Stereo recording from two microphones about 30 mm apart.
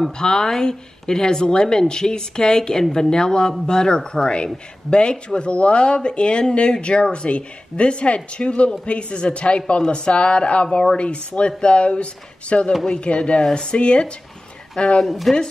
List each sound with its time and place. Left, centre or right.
0.2 s speech: left
15.0 s speech: centre